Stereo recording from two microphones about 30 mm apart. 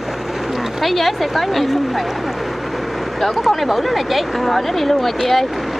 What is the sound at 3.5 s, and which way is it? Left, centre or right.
Speech, centre.